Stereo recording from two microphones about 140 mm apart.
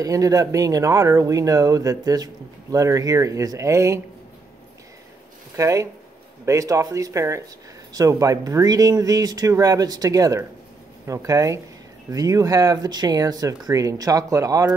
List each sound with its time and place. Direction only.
0.0 s speech: 25° right (ahead or behind)
5.6 s speech: 20° right (ahead or behind)